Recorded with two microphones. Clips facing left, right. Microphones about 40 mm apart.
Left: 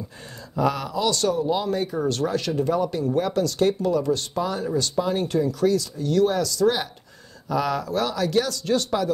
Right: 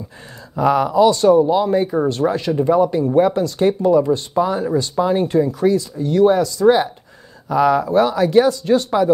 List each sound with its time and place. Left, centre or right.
0.6 s speech: right